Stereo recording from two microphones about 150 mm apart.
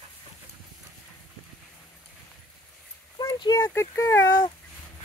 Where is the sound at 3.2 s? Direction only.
25° left (ahead or behind).